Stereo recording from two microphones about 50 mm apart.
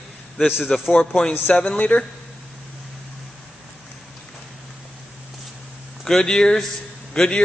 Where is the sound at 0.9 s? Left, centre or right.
Centre.